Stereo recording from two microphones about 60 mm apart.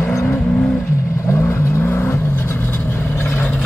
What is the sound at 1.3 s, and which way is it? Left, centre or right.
Vehicle, left.